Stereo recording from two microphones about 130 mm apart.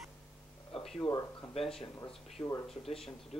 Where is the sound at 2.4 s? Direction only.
25° left (ahead or behind).